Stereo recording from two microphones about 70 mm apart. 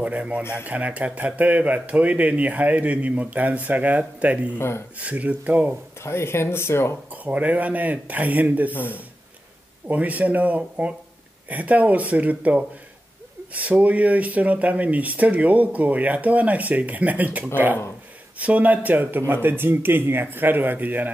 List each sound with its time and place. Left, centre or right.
0.0 s speech: centre
0.4 s speech: left
0.7 s speech: right
4.6 s speech: left
4.9 s speech: right
6.0 s speech: left
7.1 s speech: right
8.7 s speech: left
9.8 s speech: right